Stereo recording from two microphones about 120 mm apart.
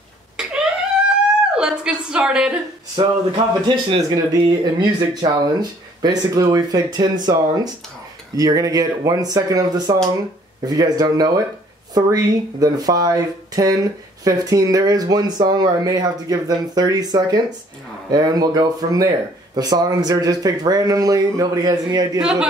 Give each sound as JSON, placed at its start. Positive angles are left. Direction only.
{"t": 0.4, "sound": "a sound", "side_deg": -5}
{"t": 3.0, "sound": "speech", "side_deg": -35}
{"t": 22.2, "sound": "a man's voice", "side_deg": -10}